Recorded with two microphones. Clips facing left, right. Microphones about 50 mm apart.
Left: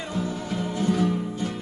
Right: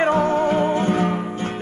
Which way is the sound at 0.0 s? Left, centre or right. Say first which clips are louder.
Right 13 dB; right.